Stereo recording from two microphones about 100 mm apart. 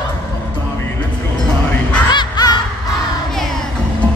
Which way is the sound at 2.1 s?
45° left (ahead or behind).